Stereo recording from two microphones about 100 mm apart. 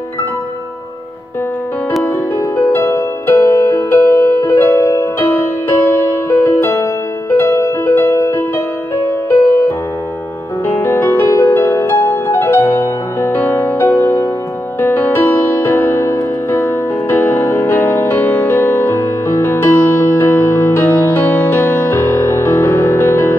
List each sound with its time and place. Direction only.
2.0 s music: 30° left (ahead or behind)
10.8 s music: 20° left (ahead or behind)